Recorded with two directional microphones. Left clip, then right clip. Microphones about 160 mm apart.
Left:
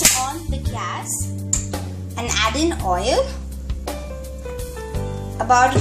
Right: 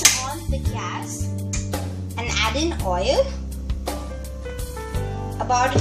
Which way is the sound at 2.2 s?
30° left (ahead or behind).